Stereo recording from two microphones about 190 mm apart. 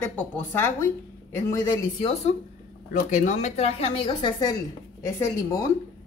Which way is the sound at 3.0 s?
40° left (ahead or behind).